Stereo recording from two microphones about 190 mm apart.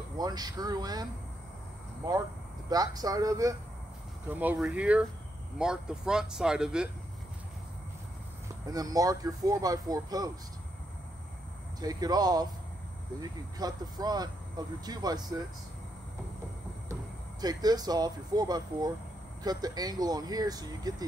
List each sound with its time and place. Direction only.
0.2 s speech: 20° right (ahead or behind)
2.7 s speech: 20° right (ahead or behind); by 6.9 s 5° right (ahead or behind)
8.6 s speech: 20° right (ahead or behind)
11.8 s speech: 20° right (ahead or behind)
17.4 s speech: 20° right (ahead or behind)